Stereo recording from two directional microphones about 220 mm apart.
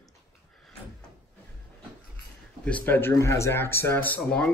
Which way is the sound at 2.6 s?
5° left (ahead or behind).